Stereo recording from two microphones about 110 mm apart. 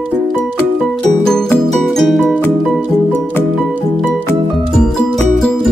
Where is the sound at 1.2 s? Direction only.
5° left (ahead or behind).